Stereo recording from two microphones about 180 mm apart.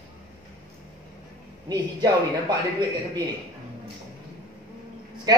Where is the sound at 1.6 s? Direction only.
20° right (ahead or behind).